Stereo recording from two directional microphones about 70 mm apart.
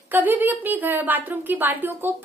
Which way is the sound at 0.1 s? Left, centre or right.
Right.